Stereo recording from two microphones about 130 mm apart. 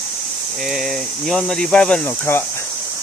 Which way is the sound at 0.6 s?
Centre (ahead or behind).